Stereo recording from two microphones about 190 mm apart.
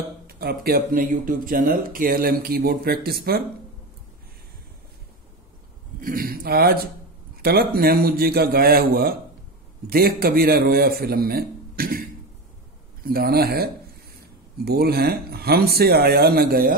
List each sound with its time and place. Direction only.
0.3 s speech: 55° right (ahead or behind)
5.9 s speech: 50° right (ahead or behind)